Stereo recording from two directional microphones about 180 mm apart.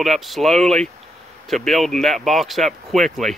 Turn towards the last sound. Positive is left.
turn(degrees=0)  # may be behind; listen again after turning